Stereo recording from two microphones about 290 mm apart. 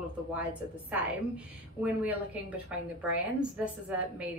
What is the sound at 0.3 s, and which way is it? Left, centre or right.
A woman's voice, centre.